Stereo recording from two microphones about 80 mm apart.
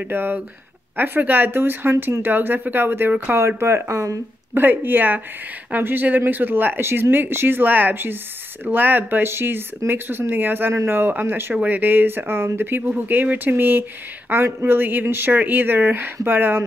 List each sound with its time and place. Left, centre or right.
0.0 s speech: right
4.6 s speech: right